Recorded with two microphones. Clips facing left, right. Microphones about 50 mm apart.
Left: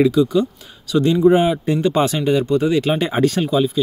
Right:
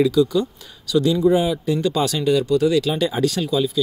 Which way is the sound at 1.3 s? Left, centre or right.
Left.